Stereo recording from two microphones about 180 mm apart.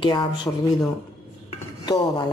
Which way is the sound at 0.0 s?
25° left (ahead or behind).